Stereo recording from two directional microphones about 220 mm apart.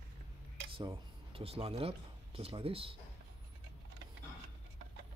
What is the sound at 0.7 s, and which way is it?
Speech, 25° right (ahead or behind).